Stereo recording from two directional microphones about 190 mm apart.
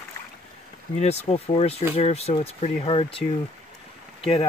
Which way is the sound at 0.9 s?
30° left (ahead or behind).